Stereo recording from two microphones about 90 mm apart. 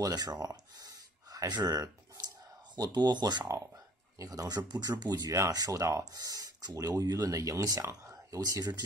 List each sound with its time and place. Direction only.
0.0 s speech: 45° right (ahead or behind)
1.5 s a sound: 45° right (ahead or behind)
3.4 s speech: 40° right (ahead or behind)